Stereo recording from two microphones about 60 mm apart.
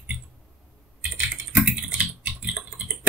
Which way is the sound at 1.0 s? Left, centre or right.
Right.